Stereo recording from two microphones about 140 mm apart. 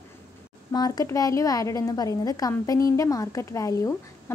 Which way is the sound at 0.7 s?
25° left (ahead or behind).